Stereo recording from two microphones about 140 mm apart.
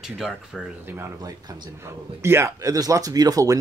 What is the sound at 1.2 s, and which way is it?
Speech, 30° right (ahead or behind).